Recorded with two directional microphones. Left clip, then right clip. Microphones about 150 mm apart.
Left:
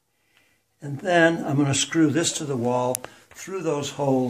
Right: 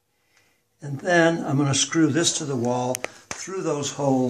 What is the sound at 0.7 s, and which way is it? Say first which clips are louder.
Speech: even; 25° left (ahead or behind).